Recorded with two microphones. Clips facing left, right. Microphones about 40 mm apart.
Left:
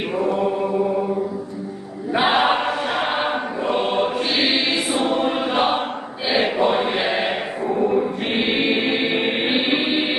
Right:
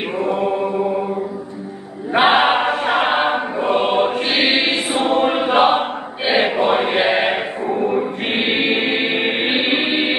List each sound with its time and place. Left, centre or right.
0.2 s chant: right
2.1 s choir: right
4.4 s choir: centre